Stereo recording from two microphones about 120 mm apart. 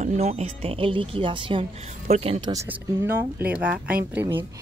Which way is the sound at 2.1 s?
60° right (ahead or behind).